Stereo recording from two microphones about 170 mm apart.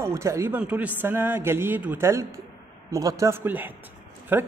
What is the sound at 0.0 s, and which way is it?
A man's voice, 15° right (ahead or behind).